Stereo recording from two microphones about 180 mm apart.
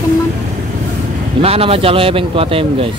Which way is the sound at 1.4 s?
35° right (ahead or behind).